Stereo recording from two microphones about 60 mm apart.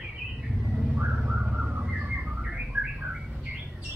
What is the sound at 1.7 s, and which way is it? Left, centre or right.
Bird, right.